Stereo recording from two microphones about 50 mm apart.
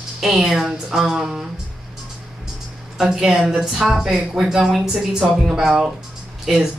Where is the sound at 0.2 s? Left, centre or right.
Centre.